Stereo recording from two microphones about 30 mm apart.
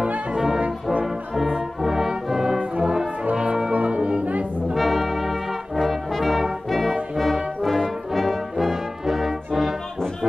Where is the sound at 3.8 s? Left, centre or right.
Right.